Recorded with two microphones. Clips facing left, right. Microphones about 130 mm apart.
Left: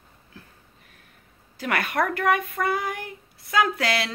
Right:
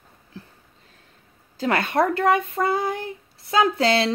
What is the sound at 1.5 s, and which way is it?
Speech, 25° right (ahead or behind).